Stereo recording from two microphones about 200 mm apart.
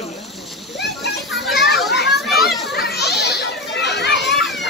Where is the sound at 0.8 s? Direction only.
55° left (ahead or behind).